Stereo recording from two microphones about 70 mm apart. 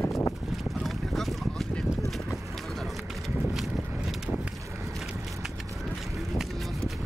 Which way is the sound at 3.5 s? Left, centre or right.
Centre.